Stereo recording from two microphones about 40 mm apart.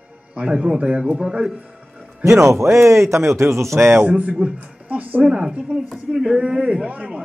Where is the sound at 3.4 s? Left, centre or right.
Right.